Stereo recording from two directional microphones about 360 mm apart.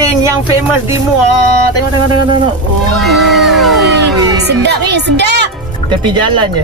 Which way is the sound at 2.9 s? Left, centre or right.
Centre.